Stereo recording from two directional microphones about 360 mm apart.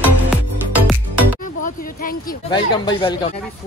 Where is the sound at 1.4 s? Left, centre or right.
Left.